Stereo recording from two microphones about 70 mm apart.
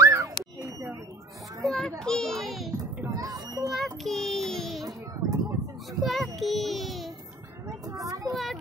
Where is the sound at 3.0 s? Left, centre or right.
Right.